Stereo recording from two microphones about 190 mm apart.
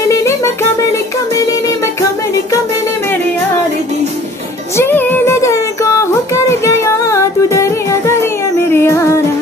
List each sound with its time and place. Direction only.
0.1 s music: 15° left (ahead or behind)
4.7 s music: 10° left (ahead or behind)